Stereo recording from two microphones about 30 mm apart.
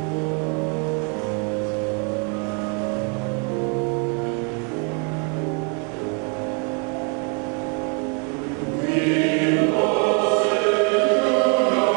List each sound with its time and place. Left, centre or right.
8.8 s choir: centre